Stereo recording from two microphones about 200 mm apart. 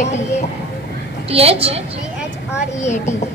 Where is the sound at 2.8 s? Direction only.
35° left (ahead or behind).